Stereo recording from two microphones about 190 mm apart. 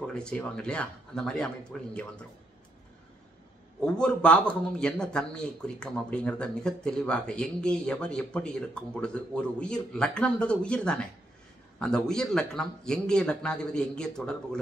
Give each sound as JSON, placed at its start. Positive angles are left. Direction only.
{"t": 0.0, "sound": "a man's voice", "side_deg": 5}
{"t": 3.8, "sound": "a man's voice", "side_deg": 5}